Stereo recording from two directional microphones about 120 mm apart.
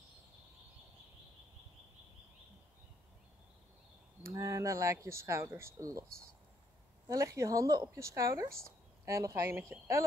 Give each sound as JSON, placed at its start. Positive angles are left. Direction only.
{"t": 4.2, "sound": "speech", "side_deg": -25}
{"t": 7.1, "sound": "speech", "side_deg": -30}